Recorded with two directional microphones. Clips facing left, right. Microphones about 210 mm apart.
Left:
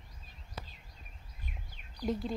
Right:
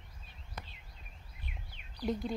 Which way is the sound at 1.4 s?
45° left (ahead or behind).